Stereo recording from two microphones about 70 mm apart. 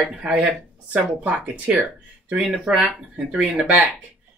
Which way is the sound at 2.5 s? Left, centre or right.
Centre.